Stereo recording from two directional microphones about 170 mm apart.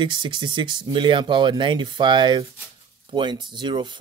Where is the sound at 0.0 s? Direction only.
30° right (ahead or behind).